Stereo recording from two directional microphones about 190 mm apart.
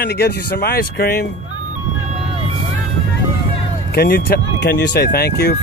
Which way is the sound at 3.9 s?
55° left (ahead or behind).